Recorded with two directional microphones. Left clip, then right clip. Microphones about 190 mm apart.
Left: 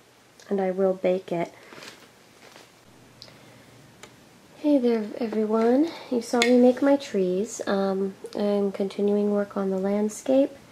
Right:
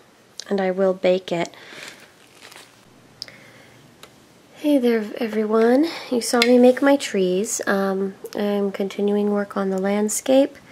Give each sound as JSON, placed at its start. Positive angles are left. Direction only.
{"t": 0.5, "sound": "speech", "side_deg": -30}
{"t": 4.6, "sound": "speech", "side_deg": -25}